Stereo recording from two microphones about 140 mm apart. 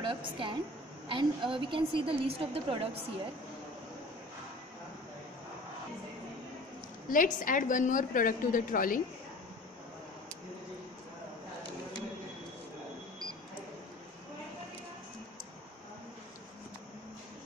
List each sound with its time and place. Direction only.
0.0 s a woman's voice: 35° right (ahead or behind)
7.1 s a woman's voice: 70° left (ahead or behind)